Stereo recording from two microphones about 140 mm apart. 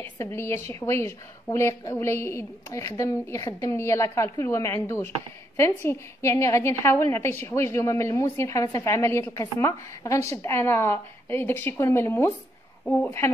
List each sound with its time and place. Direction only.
0.0 s a woman's voice: 15° left (ahead or behind)